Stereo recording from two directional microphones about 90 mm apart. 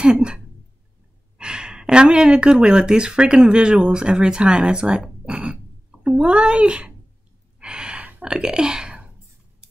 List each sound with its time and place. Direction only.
0.0 s speech: 10° right (ahead or behind)
1.4 s speech: 10° right (ahead or behind)
7.6 s gasp: 10° right (ahead or behind)